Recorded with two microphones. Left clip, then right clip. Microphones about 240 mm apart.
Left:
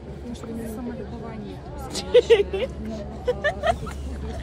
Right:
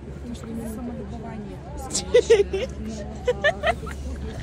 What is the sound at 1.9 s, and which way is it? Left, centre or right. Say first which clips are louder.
Speech: left 1 dB; right.